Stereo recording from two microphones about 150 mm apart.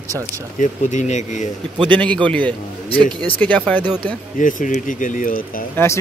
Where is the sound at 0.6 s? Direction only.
55° left (ahead or behind).